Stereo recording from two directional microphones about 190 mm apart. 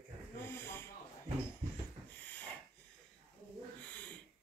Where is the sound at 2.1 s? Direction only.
10° left (ahead or behind).